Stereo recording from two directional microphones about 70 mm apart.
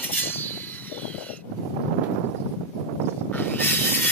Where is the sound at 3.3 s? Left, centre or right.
Left.